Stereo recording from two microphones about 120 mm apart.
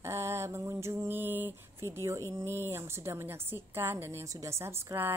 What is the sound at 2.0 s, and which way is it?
A woman's voice, 25° right (ahead or behind).